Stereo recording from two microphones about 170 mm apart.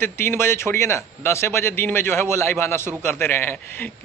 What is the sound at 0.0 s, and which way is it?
A man's voice, 15° left (ahead or behind).